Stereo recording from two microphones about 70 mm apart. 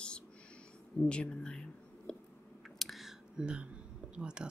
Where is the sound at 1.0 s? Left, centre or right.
Centre.